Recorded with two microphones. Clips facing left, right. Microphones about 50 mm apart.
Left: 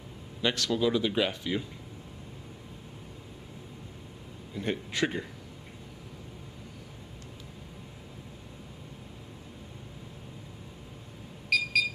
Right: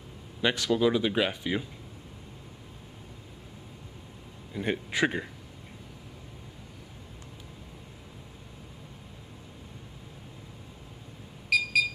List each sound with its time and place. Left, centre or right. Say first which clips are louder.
0.4 s speech: right 3 dB; centre
4.6 s speech: right 2 dB; centre
11.5 s a sound: right 1 dB; centre